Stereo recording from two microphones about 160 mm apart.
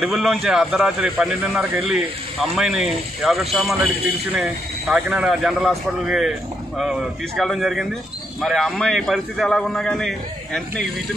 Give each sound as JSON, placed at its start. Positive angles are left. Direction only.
{"t": 0.0, "sound": "speech", "side_deg": 0}